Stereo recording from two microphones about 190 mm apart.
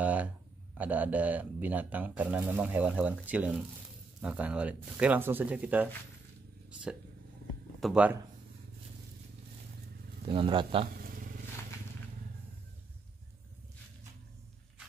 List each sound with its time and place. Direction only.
0.0 s a sound: 5° right (ahead or behind)
0.7 s speech: 10° right (ahead or behind)
10.2 s a man's voice: 25° right (ahead or behind)
11.0 s wild animals: 50° right (ahead or behind)